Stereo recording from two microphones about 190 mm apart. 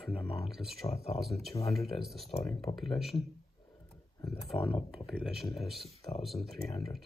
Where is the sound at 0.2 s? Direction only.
Centre (ahead or behind).